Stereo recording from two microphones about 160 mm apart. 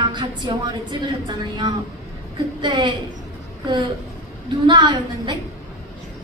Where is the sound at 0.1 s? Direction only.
25° right (ahead or behind).